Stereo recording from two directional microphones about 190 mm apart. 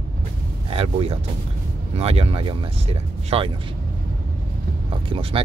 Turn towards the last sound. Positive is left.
turn(degrees=-30)  # may be behind; listen again after turning